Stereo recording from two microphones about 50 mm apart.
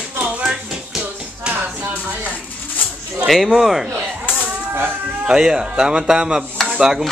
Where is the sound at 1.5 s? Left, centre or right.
Right.